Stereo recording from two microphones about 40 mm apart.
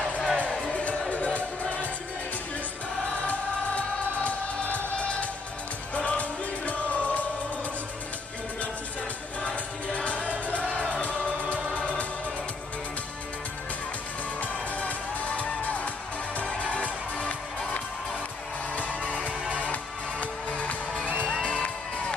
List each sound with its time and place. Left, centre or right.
0.0 s music: centre
1.1 s music: left
3.3 s music: left
9.9 s music: left
14.4 s music: left
19.6 s music: left